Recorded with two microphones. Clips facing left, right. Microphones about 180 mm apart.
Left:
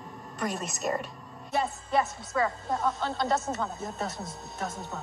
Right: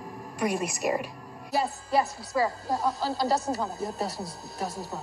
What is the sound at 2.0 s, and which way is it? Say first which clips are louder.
Speech: right 1 dB; 35° right (ahead or behind).